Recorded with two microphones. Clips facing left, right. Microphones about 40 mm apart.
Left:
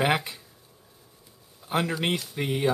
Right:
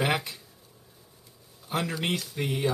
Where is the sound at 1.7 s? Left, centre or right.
Left.